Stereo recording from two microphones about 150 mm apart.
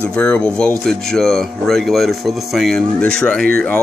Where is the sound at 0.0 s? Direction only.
10° left (ahead or behind).